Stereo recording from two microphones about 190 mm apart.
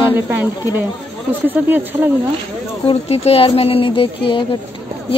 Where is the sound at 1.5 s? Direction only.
10° right (ahead or behind).